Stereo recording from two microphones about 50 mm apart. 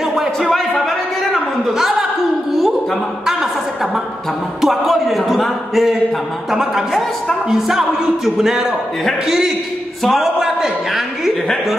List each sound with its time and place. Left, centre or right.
0.0 s a sound: centre
0.5 s speech: centre
1.7 s a woman's voice: centre
2.5 s chuckle: centre
4.6 s a woman's voice: centre